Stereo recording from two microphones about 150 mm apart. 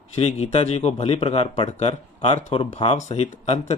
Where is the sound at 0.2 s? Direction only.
40° left (ahead or behind).